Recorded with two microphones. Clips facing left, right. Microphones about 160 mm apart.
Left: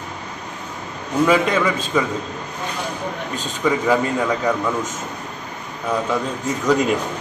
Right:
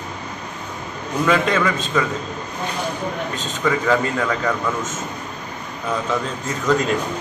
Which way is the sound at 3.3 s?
10° left (ahead or behind).